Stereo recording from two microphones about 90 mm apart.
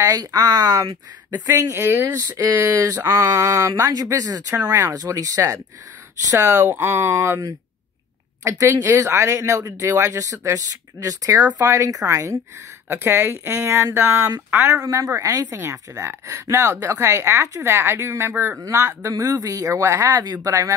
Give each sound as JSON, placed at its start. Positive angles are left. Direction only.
{"t": 0.0, "sound": "speech", "side_deg": -40}
{"t": 2.3, "sound": "speech", "side_deg": -35}
{"t": 8.5, "sound": "speech", "side_deg": -30}
{"t": 12.8, "sound": "speech", "side_deg": -25}
{"t": 15.5, "sound": "speech", "side_deg": -30}
{"t": 18.6, "sound": "speech", "side_deg": -35}